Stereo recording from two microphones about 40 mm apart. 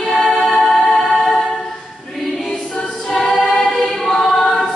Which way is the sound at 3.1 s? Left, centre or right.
Centre.